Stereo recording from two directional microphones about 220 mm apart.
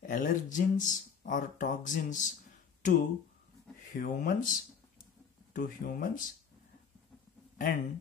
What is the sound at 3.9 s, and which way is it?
Speech, 40° left (ahead or behind).